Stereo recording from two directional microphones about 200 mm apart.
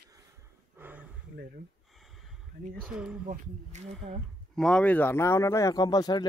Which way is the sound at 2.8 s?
5° right (ahead or behind).